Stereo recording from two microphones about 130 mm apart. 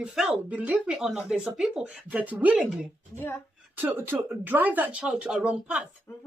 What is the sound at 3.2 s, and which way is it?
Speech, 15° left (ahead or behind).